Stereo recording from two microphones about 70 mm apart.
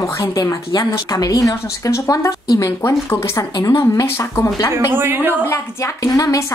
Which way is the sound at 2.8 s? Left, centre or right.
Left.